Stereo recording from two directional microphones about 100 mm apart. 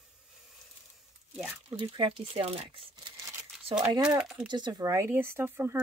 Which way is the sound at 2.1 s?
75° right (ahead or behind).